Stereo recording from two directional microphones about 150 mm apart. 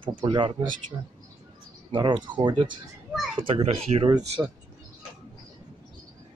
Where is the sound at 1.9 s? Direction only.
30° right (ahead or behind).